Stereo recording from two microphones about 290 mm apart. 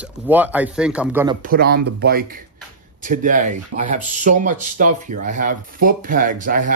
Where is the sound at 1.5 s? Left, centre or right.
Right.